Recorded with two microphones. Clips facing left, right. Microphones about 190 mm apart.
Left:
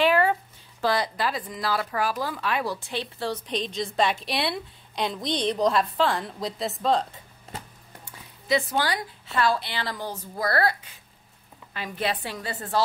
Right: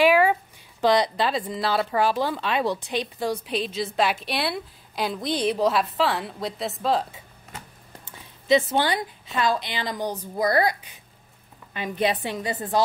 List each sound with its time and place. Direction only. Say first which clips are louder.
0.0 s speech: right 3 dB; 10° right (ahead or behind)
8.0 s a woman's voice: even; 25° right (ahead or behind)